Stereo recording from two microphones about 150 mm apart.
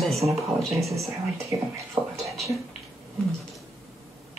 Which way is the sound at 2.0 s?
25° right (ahead or behind).